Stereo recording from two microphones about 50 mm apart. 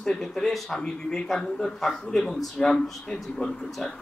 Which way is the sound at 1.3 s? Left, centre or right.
Centre.